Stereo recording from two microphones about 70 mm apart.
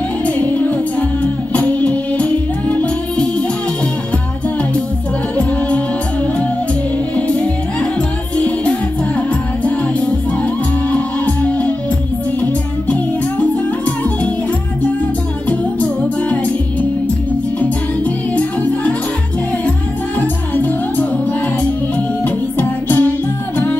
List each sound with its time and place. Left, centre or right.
0.3 s music: left
7.2 s music: centre
12.9 s music: centre
18.3 s music: left
20.2 s music: left
22.2 s music: left